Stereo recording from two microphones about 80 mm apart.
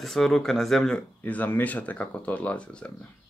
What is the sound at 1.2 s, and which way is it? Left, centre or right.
Speech, left.